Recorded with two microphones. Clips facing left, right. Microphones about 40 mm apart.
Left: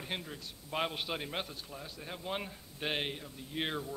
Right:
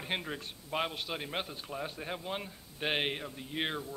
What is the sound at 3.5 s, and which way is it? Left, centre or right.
Speech, centre.